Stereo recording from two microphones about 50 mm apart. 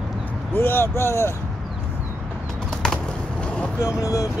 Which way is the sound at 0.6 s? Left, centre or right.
Left.